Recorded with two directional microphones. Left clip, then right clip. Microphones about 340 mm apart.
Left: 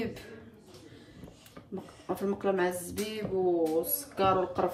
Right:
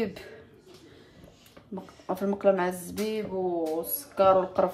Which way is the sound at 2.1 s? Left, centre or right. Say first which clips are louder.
Right 6 dB; centre.